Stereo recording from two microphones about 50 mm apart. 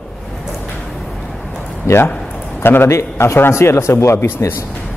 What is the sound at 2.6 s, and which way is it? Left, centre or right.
Speech, left.